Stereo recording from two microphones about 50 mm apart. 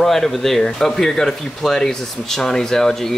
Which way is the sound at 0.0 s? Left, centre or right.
Centre.